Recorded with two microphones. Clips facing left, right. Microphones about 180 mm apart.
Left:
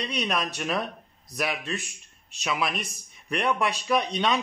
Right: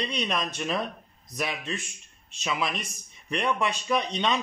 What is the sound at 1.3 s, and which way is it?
Speech, 30° right (ahead or behind).